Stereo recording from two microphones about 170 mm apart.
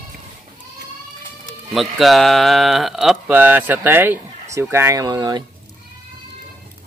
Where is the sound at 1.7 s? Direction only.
Centre (ahead or behind); by 5.4 s 25° right (ahead or behind).